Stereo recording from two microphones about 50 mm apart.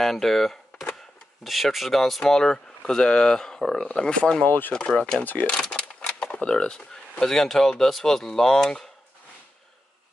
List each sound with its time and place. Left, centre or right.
0.0 s speech: centre; by 4.5 s left
4.5 s speech: left
4.7 s speech: left
5.2 s speech: left
5.5 s a sound: centre
6.4 s speech: centre